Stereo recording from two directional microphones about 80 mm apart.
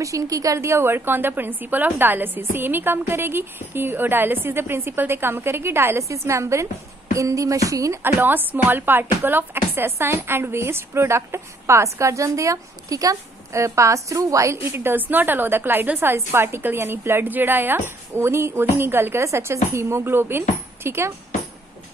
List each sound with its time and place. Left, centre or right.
0.0 s a woman's voice: right
7.2 s music: right
8.0 s speech: right
14.8 s a woman's voice: right